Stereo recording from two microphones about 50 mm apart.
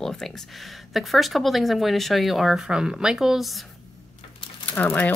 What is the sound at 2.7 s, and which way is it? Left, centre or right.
Speech, centre.